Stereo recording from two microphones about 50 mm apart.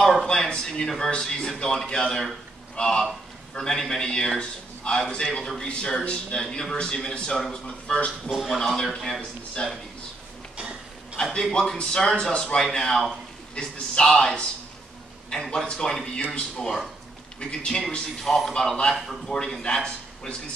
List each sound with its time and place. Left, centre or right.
0.3 s a man's voice: centre
7.6 s speech: left
8.3 s speech: centre
8.5 s a man's voice: centre
11.2 s a man's voice: centre
15.5 s a man's voice: centre